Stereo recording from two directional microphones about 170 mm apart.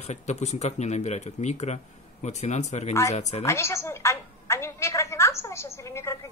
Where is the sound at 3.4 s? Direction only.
15° left (ahead or behind).